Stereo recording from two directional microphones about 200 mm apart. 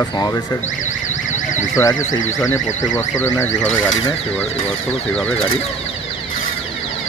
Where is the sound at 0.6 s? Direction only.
40° left (ahead or behind).